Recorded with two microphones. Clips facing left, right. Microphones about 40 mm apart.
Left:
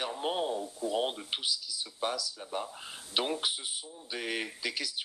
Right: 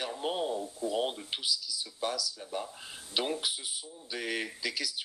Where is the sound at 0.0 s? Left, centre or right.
Centre.